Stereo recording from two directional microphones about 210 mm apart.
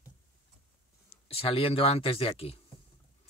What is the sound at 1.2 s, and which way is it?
Speech, 25° left (ahead or behind).